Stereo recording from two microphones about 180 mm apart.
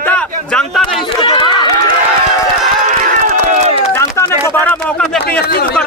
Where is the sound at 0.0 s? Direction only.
5° left (ahead or behind).